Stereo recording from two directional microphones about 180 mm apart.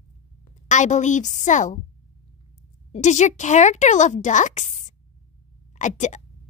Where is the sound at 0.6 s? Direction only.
40° left (ahead or behind).